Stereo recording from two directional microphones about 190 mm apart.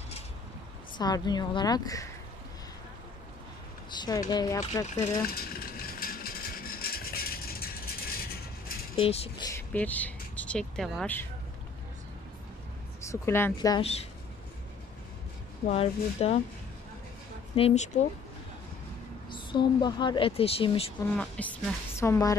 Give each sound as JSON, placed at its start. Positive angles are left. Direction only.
{"t": 0.9, "sound": "speech", "side_deg": 20}
{"t": 4.0, "sound": "speech", "side_deg": 20}
{"t": 5.2, "sound": "a sound", "side_deg": 50}
{"t": 8.9, "sound": "speech", "side_deg": 30}
{"t": 9.6, "sound": "speech", "side_deg": 10}
{"t": 13.0, "sound": "a woman's voice", "side_deg": 15}
{"t": 15.6, "sound": "speech", "side_deg": 30}
{"t": 17.6, "sound": "speech", "side_deg": 35}
{"t": 19.3, "sound": "speech", "side_deg": 25}
{"t": 21.2, "sound": "a woman's voice", "side_deg": 10}